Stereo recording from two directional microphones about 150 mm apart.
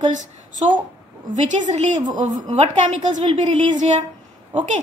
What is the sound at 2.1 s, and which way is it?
Speech, 30° right (ahead or behind).